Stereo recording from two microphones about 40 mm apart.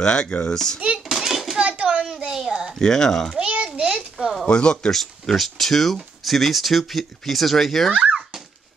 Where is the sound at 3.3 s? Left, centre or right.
Right.